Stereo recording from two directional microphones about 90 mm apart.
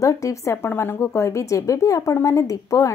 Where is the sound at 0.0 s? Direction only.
35° left (ahead or behind).